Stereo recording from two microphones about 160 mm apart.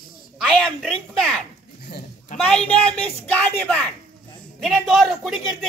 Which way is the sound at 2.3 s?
50° left (ahead or behind).